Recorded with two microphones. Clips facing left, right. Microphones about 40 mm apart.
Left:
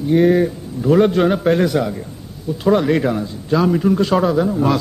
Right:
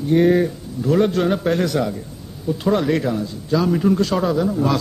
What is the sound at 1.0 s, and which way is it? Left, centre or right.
Speech, left.